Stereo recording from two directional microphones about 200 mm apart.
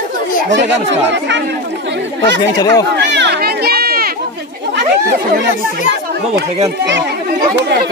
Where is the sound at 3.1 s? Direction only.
60° right (ahead or behind).